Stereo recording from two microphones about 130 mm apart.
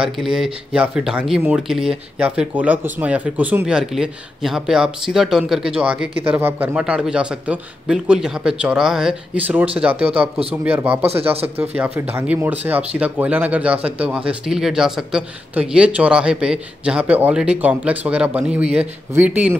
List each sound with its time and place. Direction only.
0.0 s speech: 5° right (ahead or behind)